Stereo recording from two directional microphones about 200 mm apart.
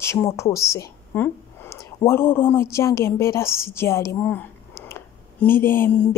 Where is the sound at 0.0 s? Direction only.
15° left (ahead or behind).